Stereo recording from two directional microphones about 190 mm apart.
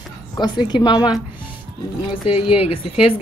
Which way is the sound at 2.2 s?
30° left (ahead or behind).